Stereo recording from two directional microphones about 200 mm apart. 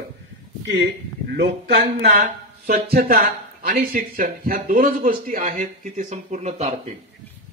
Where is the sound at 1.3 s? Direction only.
55° right (ahead or behind).